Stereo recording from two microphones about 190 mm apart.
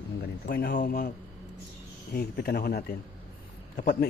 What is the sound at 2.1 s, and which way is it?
Speech, 55° left (ahead or behind).